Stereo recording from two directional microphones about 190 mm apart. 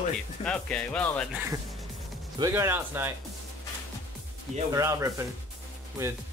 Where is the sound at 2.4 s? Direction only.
15° right (ahead or behind).